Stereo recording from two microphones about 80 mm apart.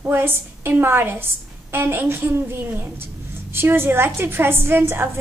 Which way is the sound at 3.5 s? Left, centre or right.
Right.